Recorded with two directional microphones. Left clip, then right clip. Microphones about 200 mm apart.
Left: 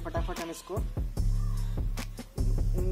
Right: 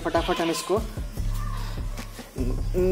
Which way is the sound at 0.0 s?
20° left (ahead or behind).